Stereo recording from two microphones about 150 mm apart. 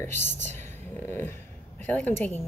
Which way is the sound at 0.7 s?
15° left (ahead or behind).